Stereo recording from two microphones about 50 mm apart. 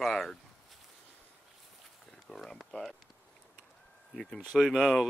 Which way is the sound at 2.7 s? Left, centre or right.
Centre.